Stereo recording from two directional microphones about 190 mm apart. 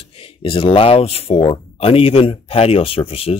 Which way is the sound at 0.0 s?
30° left (ahead or behind).